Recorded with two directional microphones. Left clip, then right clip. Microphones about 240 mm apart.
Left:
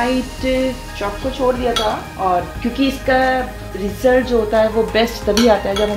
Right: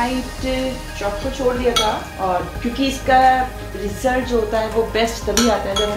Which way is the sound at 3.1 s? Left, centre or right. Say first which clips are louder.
Right 3 dB; left.